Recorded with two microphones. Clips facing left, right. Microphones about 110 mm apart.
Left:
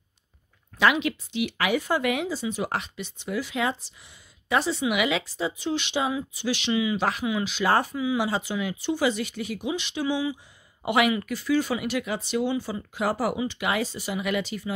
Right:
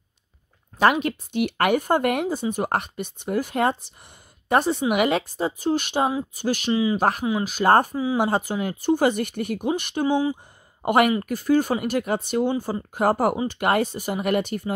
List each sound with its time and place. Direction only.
0.7 s speech: 45° right (ahead or behind)